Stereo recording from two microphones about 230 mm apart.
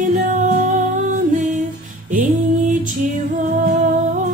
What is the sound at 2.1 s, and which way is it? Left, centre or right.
Music, right.